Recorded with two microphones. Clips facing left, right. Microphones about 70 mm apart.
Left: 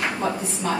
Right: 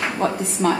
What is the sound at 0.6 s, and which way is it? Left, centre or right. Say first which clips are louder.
Speech: right 6 dB; right.